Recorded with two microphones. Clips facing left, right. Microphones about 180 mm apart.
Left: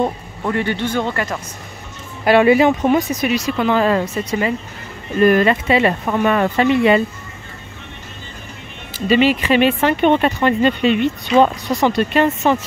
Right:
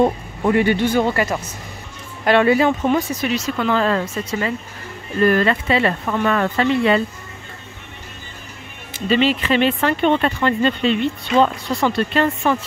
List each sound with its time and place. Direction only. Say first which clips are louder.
0.0 s speech: right 3 dB; 15° right (ahead or behind)
2.2 s speech: left 3 dB; 10° left (ahead or behind)
9.0 s speech: left 3 dB; 10° left (ahead or behind)